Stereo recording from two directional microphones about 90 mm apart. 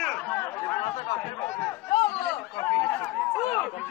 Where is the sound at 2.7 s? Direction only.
10° left (ahead or behind).